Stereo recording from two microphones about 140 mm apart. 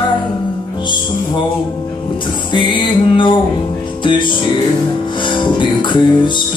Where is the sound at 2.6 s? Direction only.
35° left (ahead or behind).